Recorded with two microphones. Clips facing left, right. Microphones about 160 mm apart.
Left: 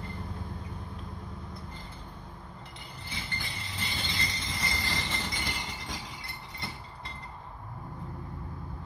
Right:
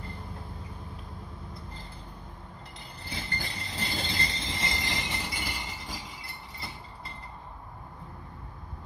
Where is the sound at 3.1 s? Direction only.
40° right (ahead or behind); by 5.9 s 5° right (ahead or behind).